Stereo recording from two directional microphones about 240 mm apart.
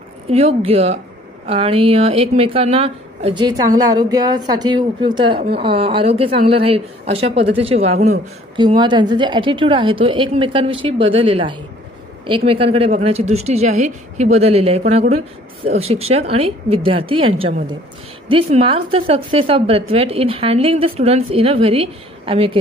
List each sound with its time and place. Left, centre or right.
0.3 s a woman's voice: right
18.3 s a woman's voice: right